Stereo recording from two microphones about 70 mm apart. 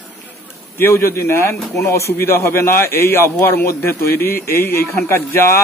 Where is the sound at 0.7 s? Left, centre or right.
Left.